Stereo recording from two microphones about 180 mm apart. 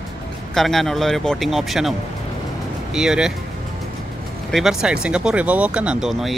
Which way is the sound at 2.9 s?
5° right (ahead or behind).